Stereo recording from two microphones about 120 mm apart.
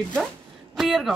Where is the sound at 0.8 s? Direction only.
Centre (ahead or behind).